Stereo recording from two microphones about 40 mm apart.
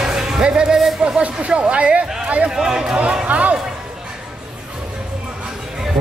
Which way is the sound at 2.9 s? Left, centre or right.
Right.